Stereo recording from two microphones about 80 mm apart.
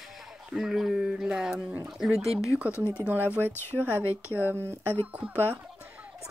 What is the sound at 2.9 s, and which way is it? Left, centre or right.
Speech, right.